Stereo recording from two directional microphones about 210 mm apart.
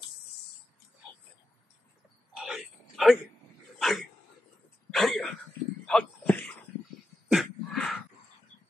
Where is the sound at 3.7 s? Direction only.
Centre (ahead or behind).